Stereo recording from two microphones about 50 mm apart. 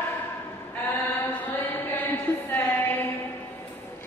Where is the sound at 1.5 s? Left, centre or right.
Left.